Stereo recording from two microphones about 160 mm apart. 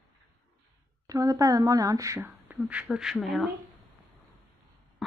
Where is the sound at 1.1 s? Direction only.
20° right (ahead or behind).